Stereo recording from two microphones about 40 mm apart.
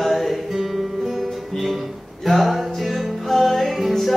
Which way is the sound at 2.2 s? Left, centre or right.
Centre.